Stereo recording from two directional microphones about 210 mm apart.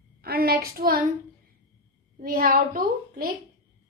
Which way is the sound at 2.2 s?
40° right (ahead or behind).